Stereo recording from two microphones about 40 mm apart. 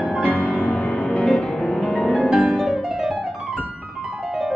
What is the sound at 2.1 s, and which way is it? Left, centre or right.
Music, centre.